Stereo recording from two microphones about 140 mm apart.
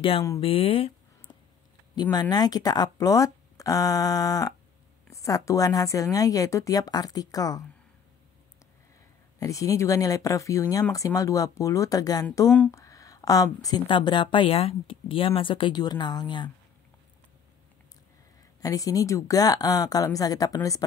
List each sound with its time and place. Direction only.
0.4 s speech: 40° left (ahead or behind)
2.0 s speech: 30° left (ahead or behind)
9.4 s speech: 25° left (ahead or behind)
12.4 s speech: 10° left (ahead or behind)
12.7 s a woman's voice: 25° left (ahead or behind)
18.6 s speech: 25° left (ahead or behind)